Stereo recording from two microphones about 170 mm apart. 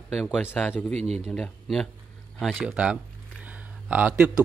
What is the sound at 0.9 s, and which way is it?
Speech, 40° right (ahead or behind).